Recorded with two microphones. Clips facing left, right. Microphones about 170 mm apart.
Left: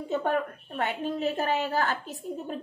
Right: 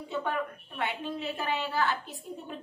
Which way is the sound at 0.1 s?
45° left (ahead or behind).